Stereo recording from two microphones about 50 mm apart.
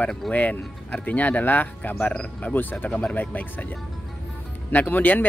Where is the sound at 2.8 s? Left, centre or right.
Left.